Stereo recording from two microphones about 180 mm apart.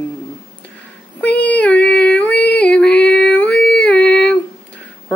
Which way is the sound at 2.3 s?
65° left (ahead or behind).